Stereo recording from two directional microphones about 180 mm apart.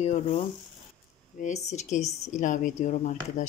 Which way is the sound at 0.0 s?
35° left (ahead or behind).